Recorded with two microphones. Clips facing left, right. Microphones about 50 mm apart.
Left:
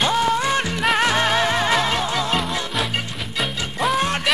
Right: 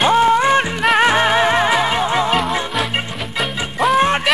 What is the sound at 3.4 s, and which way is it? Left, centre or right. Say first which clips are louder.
Music: right 4 dB; centre.